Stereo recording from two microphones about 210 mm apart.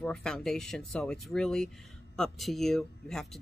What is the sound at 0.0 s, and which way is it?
Speech, 5° left (ahead or behind).